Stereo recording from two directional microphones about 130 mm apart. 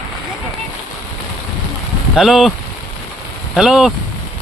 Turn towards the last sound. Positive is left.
turn(degrees=-5)  # may be behind; listen again after turning